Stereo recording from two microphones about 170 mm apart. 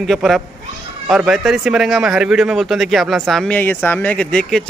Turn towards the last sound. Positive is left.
turn(degrees=5)  # may be behind; listen again after turning